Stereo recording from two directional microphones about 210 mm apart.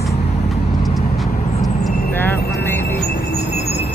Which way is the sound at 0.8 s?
Centre (ahead or behind).